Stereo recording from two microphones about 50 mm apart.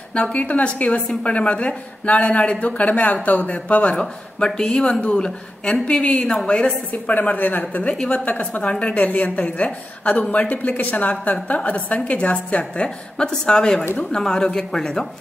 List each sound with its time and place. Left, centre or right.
0.1 s a woman's voice: left
3.9 s a woman's voice: centre
6.9 s a woman's voice: left
9.0 s a woman's voice: left; by 15.0 s centre